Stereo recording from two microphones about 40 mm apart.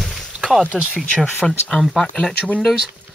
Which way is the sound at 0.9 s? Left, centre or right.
Left.